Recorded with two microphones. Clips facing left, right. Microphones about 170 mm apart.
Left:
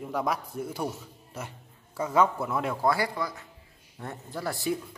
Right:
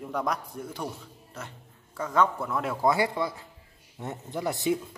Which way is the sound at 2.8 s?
20° right (ahead or behind).